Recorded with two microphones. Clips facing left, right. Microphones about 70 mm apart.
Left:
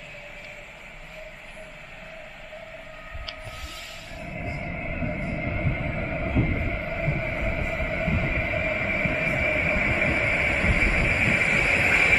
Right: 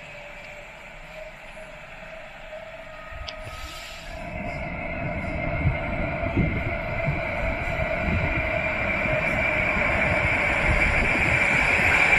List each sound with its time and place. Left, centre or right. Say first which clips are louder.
4.2 s vehicle: right 2 dB; centre
5.4 s a sound: right 1 dB; centre
6.1 s train: left 1 dB; centre
10.2 s vehicle: right 1 dB; centre